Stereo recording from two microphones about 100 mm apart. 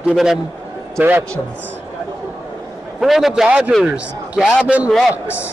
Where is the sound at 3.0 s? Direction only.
Centre (ahead or behind).